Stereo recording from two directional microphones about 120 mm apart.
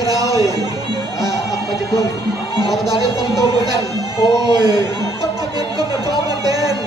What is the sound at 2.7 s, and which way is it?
Music, centre (ahead or behind).